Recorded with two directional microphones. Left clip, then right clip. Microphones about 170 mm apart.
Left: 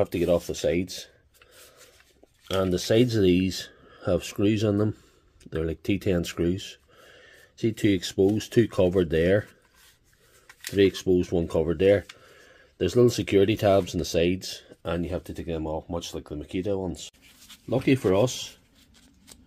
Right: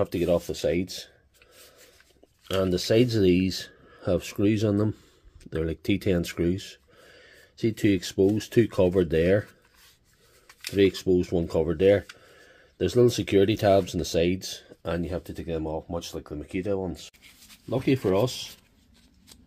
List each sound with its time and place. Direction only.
0.0 s speech: centre (ahead or behind)
2.4 s speech: centre (ahead or behind)